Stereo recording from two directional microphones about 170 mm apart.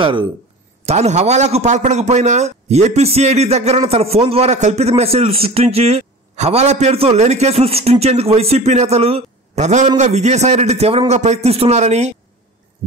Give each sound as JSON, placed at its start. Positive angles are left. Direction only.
{"t": 0.0, "sound": "speech", "side_deg": -30}
{"t": 0.8, "sound": "a man's voice", "side_deg": -40}